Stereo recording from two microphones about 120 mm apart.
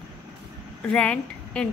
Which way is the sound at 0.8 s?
10° left (ahead or behind).